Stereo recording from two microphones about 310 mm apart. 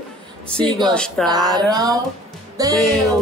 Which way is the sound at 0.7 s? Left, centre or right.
Centre.